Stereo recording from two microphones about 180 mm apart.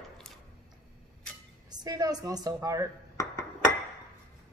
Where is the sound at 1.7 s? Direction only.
20° right (ahead or behind).